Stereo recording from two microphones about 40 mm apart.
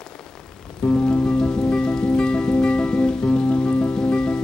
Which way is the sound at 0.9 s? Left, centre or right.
Left.